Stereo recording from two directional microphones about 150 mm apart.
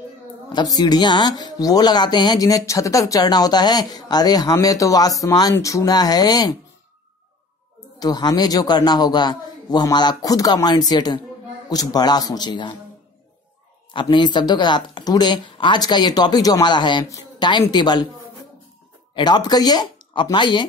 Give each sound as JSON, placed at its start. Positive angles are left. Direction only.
{"t": 0.5, "sound": "a woman's voice", "side_deg": 25}
{"t": 8.0, "sound": "a woman's voice", "side_deg": 25}
{"t": 13.9, "sound": "a woman's voice", "side_deg": 30}
{"t": 19.1, "sound": "a woman's voice", "side_deg": 30}